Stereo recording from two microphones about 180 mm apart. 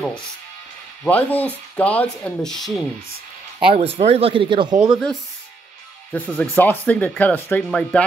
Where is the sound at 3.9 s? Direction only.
35° right (ahead or behind).